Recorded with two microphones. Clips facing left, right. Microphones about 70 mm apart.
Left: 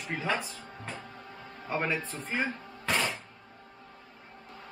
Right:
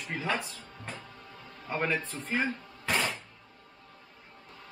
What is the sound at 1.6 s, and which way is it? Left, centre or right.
Speech, centre.